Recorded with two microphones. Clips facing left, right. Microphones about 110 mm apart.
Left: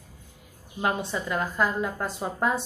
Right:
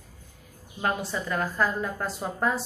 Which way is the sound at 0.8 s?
20° left (ahead or behind).